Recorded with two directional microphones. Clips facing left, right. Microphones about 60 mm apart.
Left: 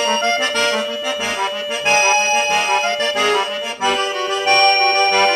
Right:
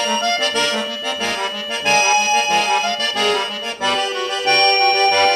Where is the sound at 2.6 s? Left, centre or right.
Left.